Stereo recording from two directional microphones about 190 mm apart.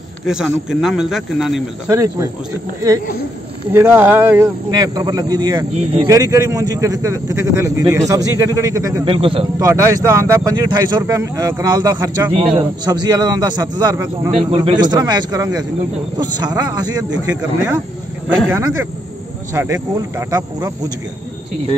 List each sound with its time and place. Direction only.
0.3 s speech: 5° right (ahead or behind)
1.9 s a man's voice: 15° right (ahead or behind)
3.7 s a man's voice: 15° right (ahead or behind)
9.0 s speech: 30° right (ahead or behind)
9.6 s speech: 15° right (ahead or behind)
14.3 s speech: 30° right (ahead or behind)
18.5 s a man's voice: 15° right (ahead or behind)